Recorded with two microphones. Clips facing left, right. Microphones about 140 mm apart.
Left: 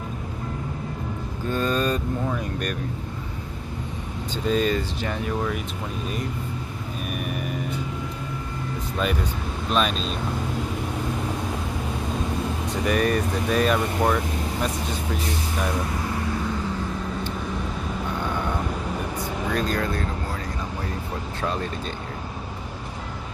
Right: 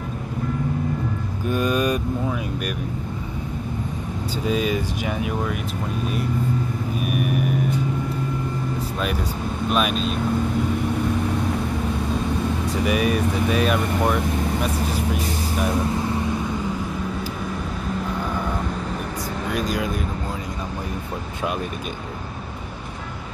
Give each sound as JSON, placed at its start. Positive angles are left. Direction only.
{"t": 1.5, "sound": "speech", "side_deg": -10}
{"t": 4.5, "sound": "speech", "side_deg": -5}
{"t": 7.0, "sound": "gong", "side_deg": -5}
{"t": 9.7, "sound": "speech", "side_deg": -5}
{"t": 12.8, "sound": "speech", "side_deg": -5}
{"t": 18.2, "sound": "vehicle", "side_deg": -5}
{"t": 19.5, "sound": "speech", "side_deg": -10}